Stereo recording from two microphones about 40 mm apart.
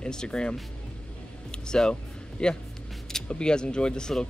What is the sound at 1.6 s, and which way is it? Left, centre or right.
Speech, centre.